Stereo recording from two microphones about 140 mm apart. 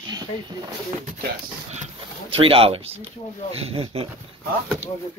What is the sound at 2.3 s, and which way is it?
Speech, 40° right (ahead or behind).